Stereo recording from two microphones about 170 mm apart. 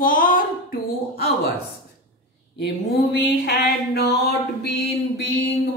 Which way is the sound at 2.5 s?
70° left (ahead or behind).